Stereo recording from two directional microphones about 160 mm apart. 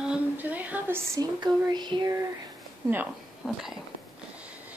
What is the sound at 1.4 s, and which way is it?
Speech, 25° right (ahead or behind).